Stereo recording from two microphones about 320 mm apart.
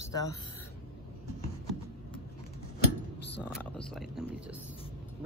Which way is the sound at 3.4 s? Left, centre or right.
Centre.